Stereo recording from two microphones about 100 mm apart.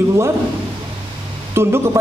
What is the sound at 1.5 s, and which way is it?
Speech, 25° right (ahead or behind).